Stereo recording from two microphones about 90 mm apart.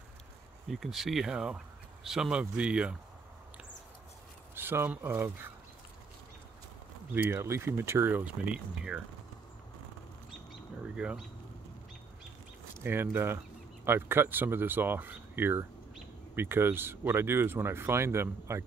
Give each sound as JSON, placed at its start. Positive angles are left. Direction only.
{"t": 0.7, "sound": "speech", "side_deg": 0}
{"t": 4.6, "sound": "speech", "side_deg": -25}
{"t": 7.2, "sound": "speech", "side_deg": -30}
{"t": 11.0, "sound": "speech", "side_deg": -15}
{"t": 12.8, "sound": "speech", "side_deg": -25}